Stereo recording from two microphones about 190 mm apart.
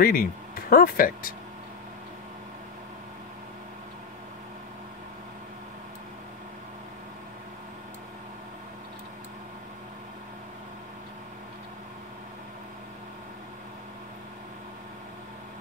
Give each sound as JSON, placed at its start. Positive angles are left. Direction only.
{"t": 0.0, "sound": "speech", "side_deg": 50}